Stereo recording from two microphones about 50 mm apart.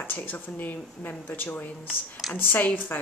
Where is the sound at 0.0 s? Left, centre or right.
Left.